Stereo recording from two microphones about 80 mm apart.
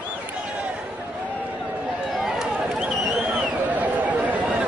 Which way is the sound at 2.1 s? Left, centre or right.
Centre.